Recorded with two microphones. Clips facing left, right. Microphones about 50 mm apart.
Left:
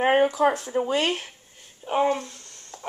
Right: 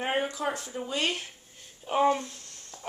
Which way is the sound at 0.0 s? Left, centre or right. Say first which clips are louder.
Left 9 dB; left.